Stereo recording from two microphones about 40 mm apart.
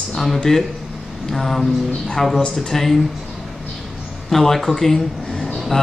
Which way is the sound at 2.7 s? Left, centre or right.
Centre.